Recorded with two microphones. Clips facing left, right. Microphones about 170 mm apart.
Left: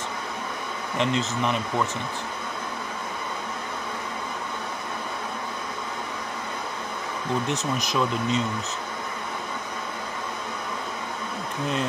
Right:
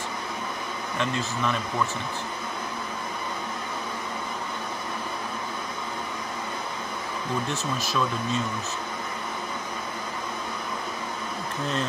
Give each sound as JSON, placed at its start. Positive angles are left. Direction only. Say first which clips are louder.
{"t": 0.9, "sound": "speech", "louder": "left 4 dB", "side_deg": 20}
{"t": 7.4, "sound": "speech", "louder": "left 2 dB", "side_deg": 20}